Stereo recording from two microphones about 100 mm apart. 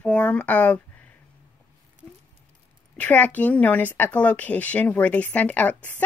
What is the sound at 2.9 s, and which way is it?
Speech, 15° left (ahead or behind).